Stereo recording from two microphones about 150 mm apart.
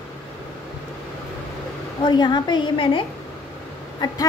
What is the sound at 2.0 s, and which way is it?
A woman's voice, 30° left (ahead or behind).